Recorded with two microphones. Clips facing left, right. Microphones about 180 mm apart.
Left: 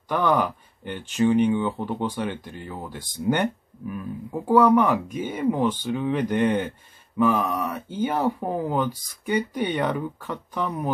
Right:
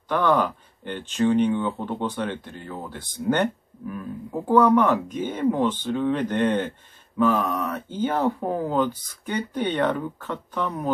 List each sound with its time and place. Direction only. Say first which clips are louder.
0.1 s speech: right 1 dB; 10° left (ahead or behind)